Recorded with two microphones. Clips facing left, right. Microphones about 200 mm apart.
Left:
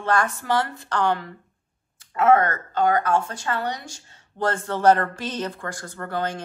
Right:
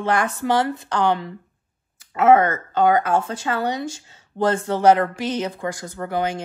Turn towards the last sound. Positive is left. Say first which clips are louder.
# right 4 dB
turn(degrees=-15)  # may be behind; listen again after turning